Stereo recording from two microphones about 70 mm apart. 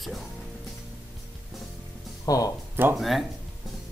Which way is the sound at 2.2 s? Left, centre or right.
Left.